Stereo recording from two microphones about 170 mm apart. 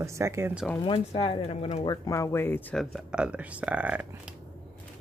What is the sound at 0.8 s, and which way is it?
Speech, 30° left (ahead or behind).